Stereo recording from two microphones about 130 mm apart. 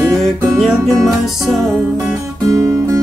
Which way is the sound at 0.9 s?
Centre (ahead or behind).